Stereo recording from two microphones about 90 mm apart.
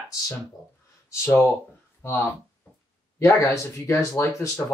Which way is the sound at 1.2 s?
25° left (ahead or behind).